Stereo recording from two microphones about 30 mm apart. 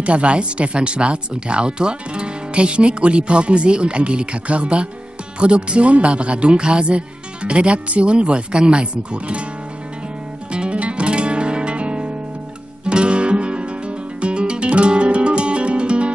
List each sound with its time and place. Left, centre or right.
0.0 s speech: right
10.5 s music: right
10.8 s guitar: right
12.8 s music: right